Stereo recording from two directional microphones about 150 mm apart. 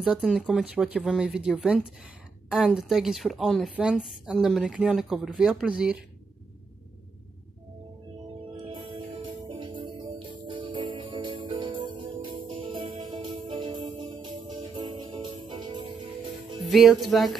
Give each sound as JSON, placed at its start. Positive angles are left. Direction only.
{"t": 0.0, "sound": "a woman's voice", "side_deg": -5}
{"t": 8.5, "sound": "music", "side_deg": -30}
{"t": 14.5, "sound": "jingle bell", "side_deg": -30}
{"t": 16.6, "sound": "a woman's voice", "side_deg": 0}